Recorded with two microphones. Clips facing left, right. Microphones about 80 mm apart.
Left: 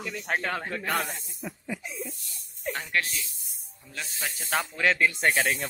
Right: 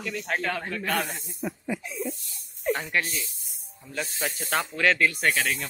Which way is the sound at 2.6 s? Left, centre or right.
Centre.